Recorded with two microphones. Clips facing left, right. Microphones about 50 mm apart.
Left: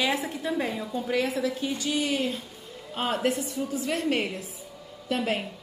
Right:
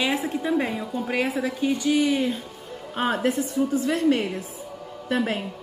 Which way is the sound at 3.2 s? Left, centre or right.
Right.